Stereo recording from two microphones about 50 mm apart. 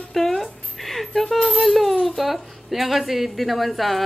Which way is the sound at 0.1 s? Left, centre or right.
Centre.